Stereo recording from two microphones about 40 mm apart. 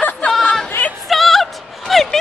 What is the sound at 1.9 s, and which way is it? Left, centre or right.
Speech, centre.